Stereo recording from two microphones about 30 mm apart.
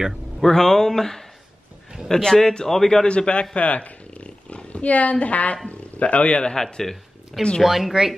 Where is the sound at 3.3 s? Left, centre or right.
Left.